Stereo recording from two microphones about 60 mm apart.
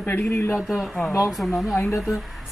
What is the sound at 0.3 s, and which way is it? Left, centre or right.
Speech, left.